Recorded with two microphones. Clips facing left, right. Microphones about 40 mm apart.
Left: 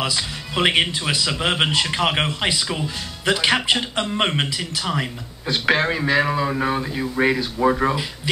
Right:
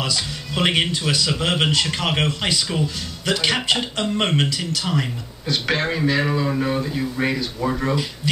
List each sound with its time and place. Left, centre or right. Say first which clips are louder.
0.0 s speech: left 1 dB; centre